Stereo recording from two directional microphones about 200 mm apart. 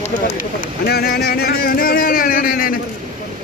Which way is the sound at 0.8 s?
50° left (ahead or behind).